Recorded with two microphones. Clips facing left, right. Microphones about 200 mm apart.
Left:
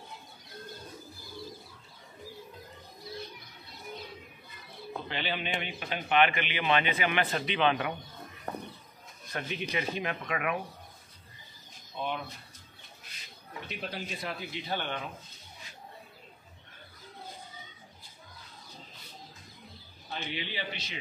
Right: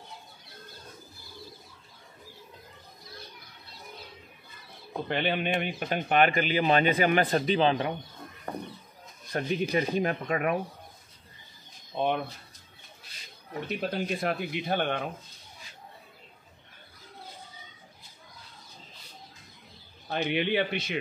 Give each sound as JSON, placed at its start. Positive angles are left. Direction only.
{"t": 5.0, "sound": "speech", "side_deg": -50}
{"t": 9.3, "sound": "speech", "side_deg": -40}
{"t": 12.0, "sound": "a man's voice", "side_deg": -55}
{"t": 13.5, "sound": "speech", "side_deg": -45}
{"t": 20.2, "sound": "a man's voice", "side_deg": -55}